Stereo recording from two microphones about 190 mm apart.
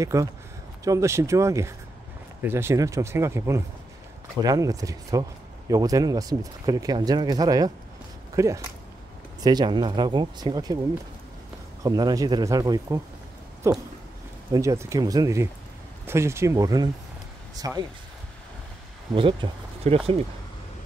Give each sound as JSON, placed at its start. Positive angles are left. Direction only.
{"t": 0.0, "sound": "speech", "side_deg": -15}
{"t": 11.8, "sound": "speech", "side_deg": -20}
{"t": 19.1, "sound": "speech", "side_deg": -25}